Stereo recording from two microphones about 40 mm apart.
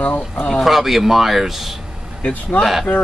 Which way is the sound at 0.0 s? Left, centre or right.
Left.